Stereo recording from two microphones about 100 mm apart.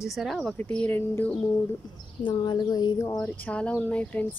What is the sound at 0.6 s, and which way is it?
Speech, 15° left (ahead or behind).